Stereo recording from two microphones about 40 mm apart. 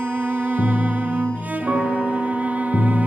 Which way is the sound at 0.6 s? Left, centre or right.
Right.